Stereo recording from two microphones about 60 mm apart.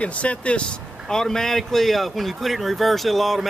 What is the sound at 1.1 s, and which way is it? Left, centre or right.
Speech, centre.